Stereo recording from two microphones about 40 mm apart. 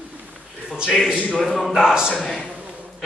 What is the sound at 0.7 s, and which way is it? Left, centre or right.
Speech, centre.